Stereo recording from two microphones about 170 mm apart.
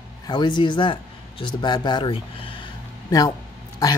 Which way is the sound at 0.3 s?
25° left (ahead or behind).